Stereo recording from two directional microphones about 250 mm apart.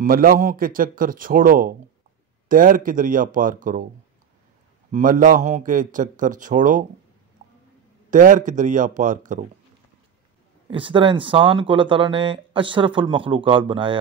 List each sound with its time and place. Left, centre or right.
0.0 s a man's voice: right
4.9 s a man's voice: right
7.4 s a sound: right
8.1 s a man's voice: right
10.7 s speech: centre